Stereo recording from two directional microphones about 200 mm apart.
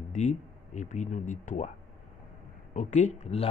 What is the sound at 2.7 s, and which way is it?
Speech, 35° left (ahead or behind).